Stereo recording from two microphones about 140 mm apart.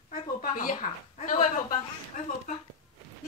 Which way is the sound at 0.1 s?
80° left.